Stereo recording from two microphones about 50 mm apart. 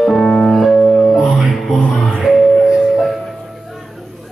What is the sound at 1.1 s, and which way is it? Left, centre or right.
Music, centre.